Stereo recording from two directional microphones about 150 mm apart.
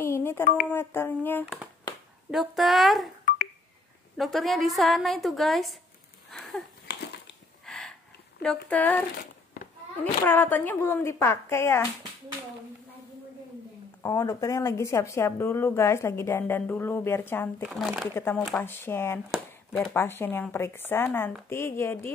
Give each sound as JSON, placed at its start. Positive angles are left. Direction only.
{"t": 0.0, "sound": "speech", "side_deg": 15}
{"t": 1.4, "sound": "a woman's voice", "side_deg": -10}
{"t": 4.2, "sound": "a woman's voice", "side_deg": 0}
{"t": 6.3, "sound": "a sound", "side_deg": 5}
{"t": 6.9, "sound": "crushing", "side_deg": 90}
{"t": 7.6, "sound": "a sound", "side_deg": 5}
{"t": 8.4, "sound": "speech", "side_deg": 5}
{"t": 10.2, "sound": "speech", "side_deg": 15}
{"t": 14.0, "sound": "speech", "side_deg": 20}
{"t": 17.6, "sound": "a woman's voice", "side_deg": 0}
{"t": 18.1, "sound": "speech", "side_deg": 15}
{"t": 19.3, "sound": "a sound", "side_deg": 0}
{"t": 19.9, "sound": "speech", "side_deg": 15}